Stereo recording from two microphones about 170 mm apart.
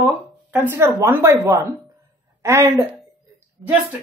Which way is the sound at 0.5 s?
10° right (ahead or behind).